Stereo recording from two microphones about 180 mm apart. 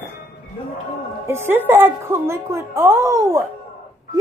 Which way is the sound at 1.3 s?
15° right (ahead or behind).